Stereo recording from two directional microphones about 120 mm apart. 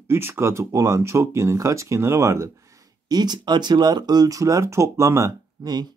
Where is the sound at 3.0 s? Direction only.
35° right (ahead or behind).